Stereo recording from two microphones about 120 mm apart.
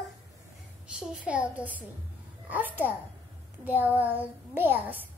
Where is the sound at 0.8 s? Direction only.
5° right (ahead or behind).